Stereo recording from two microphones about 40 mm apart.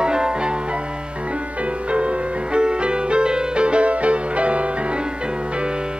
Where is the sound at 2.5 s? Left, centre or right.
Right.